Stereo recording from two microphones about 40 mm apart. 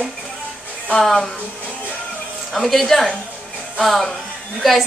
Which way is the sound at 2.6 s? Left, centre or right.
Centre.